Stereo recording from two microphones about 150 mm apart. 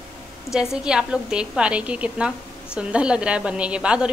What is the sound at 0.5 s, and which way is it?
A woman's voice, 5° right (ahead or behind).